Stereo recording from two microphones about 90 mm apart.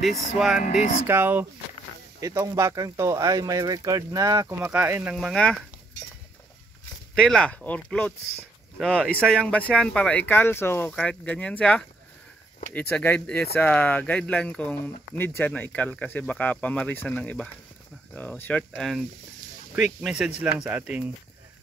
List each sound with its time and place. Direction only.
0.0 s speech: centre (ahead or behind)
1.0 s speech: 25° right (ahead or behind)
2.1 s speech: 40° right (ahead or behind)
4.6 s speech: 25° right (ahead or behind)
5.1 s speech: 5° left (ahead or behind)
7.2 s speech: 5° left (ahead or behind)
10.3 s speech: 25° left (ahead or behind)
10.9 s speech: 10° left (ahead or behind)
18.8 s speech: centre (ahead or behind)
19.7 s speech: 10° right (ahead or behind)